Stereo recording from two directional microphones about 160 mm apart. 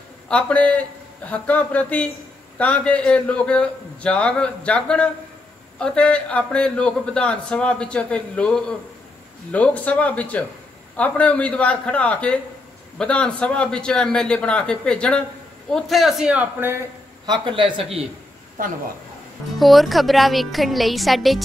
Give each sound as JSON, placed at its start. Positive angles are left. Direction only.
{"t": 0.3, "sound": "a man's voice", "side_deg": 10}
{"t": 17.3, "sound": "speech", "side_deg": -30}
{"t": 19.6, "sound": "a man's voice", "side_deg": 0}